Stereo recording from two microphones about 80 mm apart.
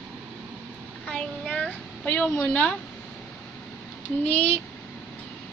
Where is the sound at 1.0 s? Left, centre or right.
Centre.